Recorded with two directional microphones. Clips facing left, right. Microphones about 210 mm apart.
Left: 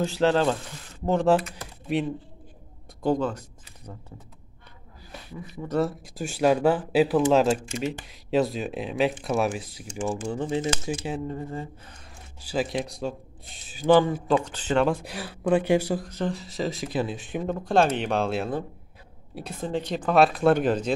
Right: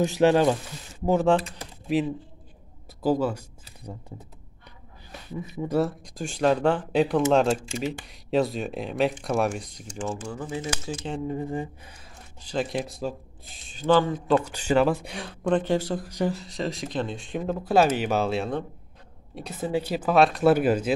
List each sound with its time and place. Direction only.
0.0 s speech: 15° right (ahead or behind)
1.9 s speech: centre (ahead or behind)
5.5 s speech: 15° right (ahead or behind)
5.8 s speech: 5° left (ahead or behind)
10.2 s speech: 30° left (ahead or behind)
11.2 s speech: 15° right (ahead or behind)
12.4 s speech: 5° left (ahead or behind)
14.2 s speech: centre (ahead or behind)
16.1 s speech: 15° right (ahead or behind)
16.3 s speech: centre (ahead or behind)